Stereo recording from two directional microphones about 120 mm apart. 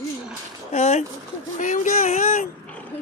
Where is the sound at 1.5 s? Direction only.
90° left.